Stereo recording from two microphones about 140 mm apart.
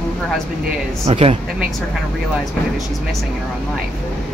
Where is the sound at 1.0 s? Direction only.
45° right (ahead or behind).